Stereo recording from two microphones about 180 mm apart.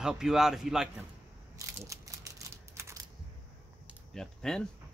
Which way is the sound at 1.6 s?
15° right (ahead or behind).